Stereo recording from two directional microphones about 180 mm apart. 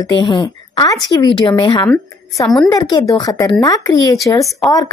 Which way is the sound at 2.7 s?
20° left (ahead or behind).